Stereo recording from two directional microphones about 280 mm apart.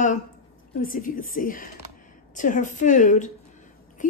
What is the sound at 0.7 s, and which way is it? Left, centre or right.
A woman's voice, left.